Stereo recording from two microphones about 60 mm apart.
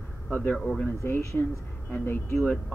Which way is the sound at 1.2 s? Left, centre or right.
Left.